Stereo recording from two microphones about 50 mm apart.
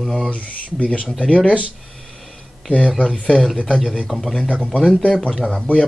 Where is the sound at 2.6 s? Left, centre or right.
Centre.